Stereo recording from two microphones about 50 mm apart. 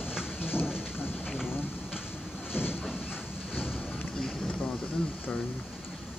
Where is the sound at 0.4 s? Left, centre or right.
Left.